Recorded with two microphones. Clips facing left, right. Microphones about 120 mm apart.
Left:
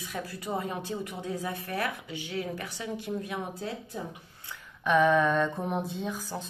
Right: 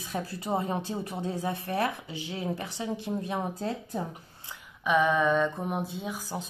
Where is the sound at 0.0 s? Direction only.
30° right (ahead or behind).